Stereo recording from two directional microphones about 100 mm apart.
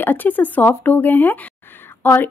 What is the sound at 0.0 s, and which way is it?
Speech, 20° left (ahead or behind).